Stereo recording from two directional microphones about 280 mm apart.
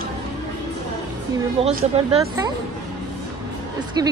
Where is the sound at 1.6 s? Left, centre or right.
Right.